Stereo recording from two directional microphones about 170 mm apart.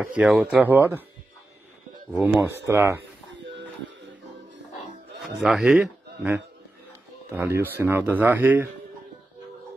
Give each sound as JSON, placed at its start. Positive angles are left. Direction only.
{"t": 0.0, "sound": "speech", "side_deg": -5}
{"t": 2.0, "sound": "speech", "side_deg": -10}
{"t": 5.4, "sound": "a man's voice", "side_deg": -5}